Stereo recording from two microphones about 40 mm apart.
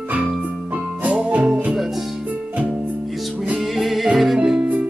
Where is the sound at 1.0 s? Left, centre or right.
Right.